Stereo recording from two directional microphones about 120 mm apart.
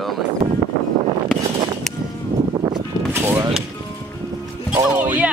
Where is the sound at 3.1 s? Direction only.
25° right (ahead or behind).